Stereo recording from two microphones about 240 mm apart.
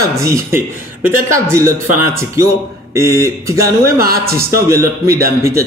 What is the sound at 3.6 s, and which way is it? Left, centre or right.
Speech, right.